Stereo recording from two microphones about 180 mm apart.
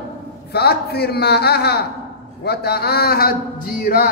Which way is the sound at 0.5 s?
60° left (ahead or behind).